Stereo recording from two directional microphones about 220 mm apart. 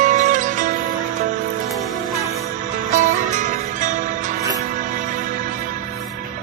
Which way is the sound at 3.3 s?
35° right (ahead or behind).